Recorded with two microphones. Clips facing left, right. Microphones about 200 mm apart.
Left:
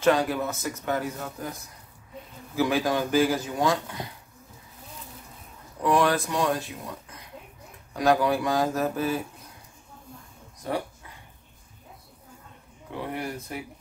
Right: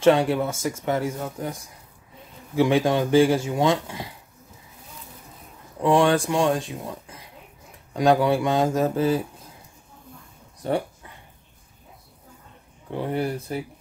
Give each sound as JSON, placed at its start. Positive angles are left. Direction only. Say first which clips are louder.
{"t": 0.0, "sound": "speech", "louder": "right 4 dB", "side_deg": -25}
{"t": 5.8, "sound": "speech", "louder": "right 4 dB", "side_deg": -25}
{"t": 13.1, "sound": "speech", "louder": "right 9 dB", "side_deg": -30}